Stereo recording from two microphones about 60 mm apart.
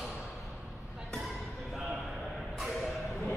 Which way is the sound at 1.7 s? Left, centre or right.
Centre.